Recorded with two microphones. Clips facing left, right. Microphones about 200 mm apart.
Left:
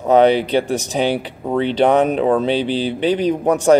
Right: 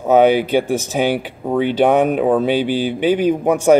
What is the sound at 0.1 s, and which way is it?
Speech, 5° right (ahead or behind).